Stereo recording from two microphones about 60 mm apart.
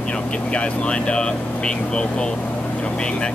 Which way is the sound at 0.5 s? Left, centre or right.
Centre.